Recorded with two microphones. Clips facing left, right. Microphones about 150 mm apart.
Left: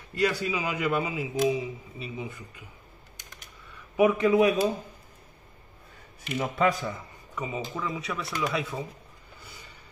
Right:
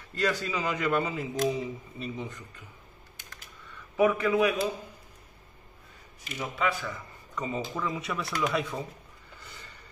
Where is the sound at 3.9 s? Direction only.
20° left (ahead or behind).